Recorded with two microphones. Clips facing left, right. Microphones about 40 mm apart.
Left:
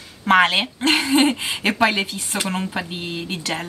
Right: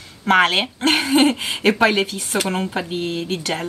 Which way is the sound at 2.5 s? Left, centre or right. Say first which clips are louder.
Right 2 dB; centre.